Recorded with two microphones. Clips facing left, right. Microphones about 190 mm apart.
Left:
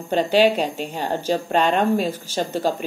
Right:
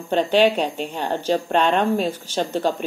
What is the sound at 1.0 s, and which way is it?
Speech, 10° left (ahead or behind).